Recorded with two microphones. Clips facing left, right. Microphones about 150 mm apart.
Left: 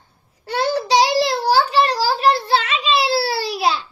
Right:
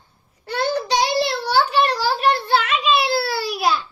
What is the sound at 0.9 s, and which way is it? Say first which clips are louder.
Child singing: left 8 dB; 90° left.